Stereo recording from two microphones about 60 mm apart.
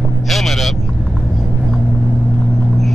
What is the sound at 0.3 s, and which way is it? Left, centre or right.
Vehicle, centre.